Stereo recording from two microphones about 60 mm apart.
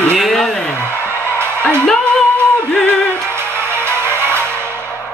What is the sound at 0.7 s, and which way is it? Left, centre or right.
Music, left.